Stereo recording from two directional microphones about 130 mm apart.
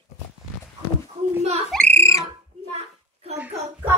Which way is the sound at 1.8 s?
20° left (ahead or behind).